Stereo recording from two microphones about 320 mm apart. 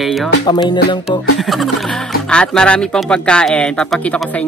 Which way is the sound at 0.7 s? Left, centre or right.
Centre.